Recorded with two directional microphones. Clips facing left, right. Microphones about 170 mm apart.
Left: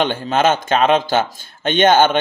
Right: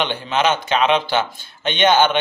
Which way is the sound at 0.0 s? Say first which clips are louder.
Left 3 dB; 45° left (ahead or behind).